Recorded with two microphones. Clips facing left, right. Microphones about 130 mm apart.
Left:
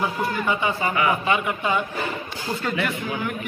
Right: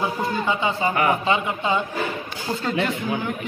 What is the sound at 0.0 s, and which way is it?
A man's voice, 25° right (ahead or behind).